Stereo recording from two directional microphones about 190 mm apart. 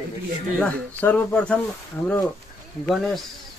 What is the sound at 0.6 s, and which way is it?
Speech, 5° left (ahead or behind).